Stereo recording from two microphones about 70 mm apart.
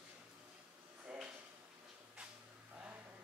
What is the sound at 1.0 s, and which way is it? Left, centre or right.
Drawer open or close, centre.